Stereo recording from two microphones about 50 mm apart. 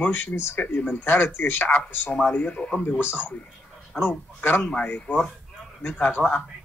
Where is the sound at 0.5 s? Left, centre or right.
Left.